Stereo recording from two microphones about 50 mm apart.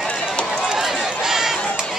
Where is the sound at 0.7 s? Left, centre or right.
Centre.